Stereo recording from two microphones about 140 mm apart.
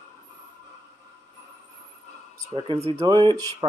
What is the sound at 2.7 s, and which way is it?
Speech, 30° right (ahead or behind).